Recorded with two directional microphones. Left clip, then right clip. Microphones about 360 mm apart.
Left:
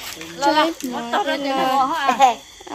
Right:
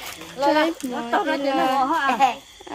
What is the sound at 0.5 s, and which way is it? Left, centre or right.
A child's voice, right.